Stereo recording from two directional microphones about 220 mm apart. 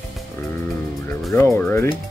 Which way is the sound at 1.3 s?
10° left (ahead or behind).